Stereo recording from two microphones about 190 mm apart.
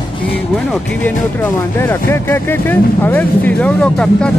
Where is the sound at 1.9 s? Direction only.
10° left (ahead or behind).